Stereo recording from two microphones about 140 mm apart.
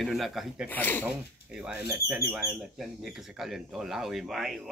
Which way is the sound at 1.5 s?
5° right (ahead or behind).